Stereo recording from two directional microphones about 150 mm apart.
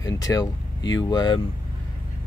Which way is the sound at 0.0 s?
25° left (ahead or behind).